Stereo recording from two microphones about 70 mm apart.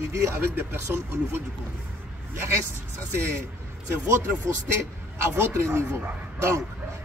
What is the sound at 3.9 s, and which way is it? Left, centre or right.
Speech, right.